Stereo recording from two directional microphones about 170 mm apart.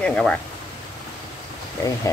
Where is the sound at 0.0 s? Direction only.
5° left (ahead or behind).